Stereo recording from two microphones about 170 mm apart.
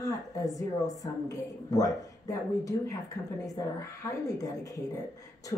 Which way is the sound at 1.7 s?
20° left (ahead or behind).